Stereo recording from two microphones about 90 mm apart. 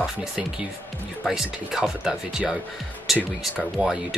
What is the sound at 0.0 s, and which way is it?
Speech, 5° right (ahead or behind).